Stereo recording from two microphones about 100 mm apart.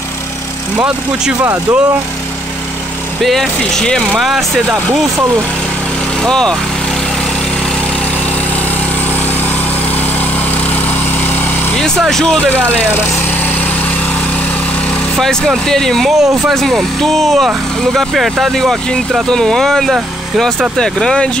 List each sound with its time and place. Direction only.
0.7 s speech: 10° right (ahead or behind)
1.4 s speech: 25° right (ahead or behind)
3.3 s speech: 5° left (ahead or behind)
6.2 s speech: 5° left (ahead or behind)
12.0 s speech: 5° left (ahead or behind)
15.1 s speech: 5° left (ahead or behind)